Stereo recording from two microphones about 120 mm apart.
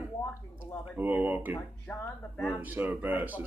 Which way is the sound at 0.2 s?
20° left (ahead or behind).